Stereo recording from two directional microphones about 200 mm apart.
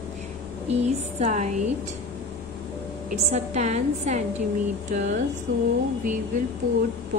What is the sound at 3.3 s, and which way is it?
Speech, 35° right (ahead or behind).